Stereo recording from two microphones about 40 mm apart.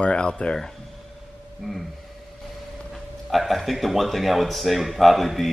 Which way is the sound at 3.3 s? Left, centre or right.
Centre.